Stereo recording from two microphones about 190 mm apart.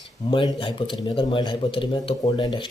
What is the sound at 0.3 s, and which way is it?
A man's voice, 25° left (ahead or behind).